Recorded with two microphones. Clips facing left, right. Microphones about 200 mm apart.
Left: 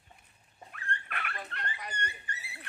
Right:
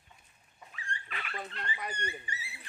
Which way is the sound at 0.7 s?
60° left (ahead or behind).